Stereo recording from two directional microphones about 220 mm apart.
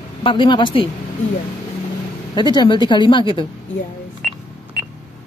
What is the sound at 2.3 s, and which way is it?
A woman's voice, 20° left (ahead or behind).